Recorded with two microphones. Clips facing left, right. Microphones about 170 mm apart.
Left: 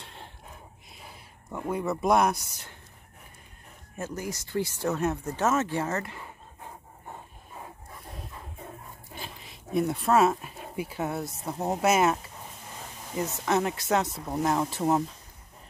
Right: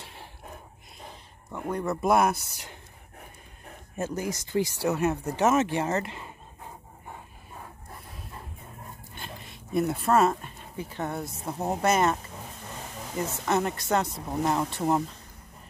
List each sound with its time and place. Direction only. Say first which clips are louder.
0.0 s snort: even; 5° right (ahead or behind)
1.5 s speech: even; 5° left (ahead or behind)
4.0 s speech: right 4 dB; 20° right (ahead or behind)
9.1 s a sound: left 2 dB; centre (ahead or behind)
9.8 s speech: even; centre (ahead or behind)
13.2 s speech: even; centre (ahead or behind)